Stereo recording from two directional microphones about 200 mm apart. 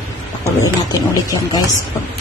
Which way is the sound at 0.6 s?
15° left (ahead or behind).